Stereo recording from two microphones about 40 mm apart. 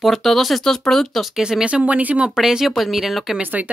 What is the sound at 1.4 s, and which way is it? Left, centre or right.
Speech, centre.